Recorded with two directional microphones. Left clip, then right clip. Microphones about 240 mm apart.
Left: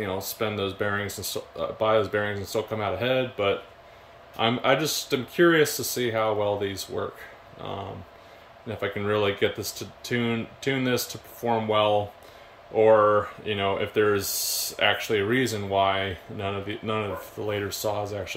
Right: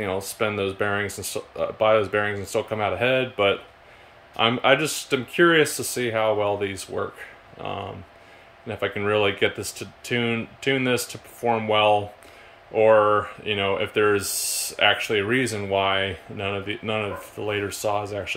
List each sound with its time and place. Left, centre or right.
0.0 s speech: centre
8.6 s speech: centre